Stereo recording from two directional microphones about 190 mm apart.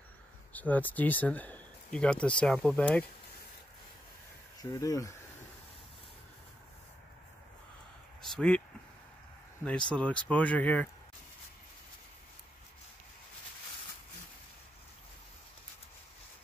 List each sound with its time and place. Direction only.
0.5 s speech: 10° left (ahead or behind)
4.6 s speech: 20° left (ahead or behind)
8.2 s speech: 5° left (ahead or behind)
9.8 s speech: 5° left (ahead or behind)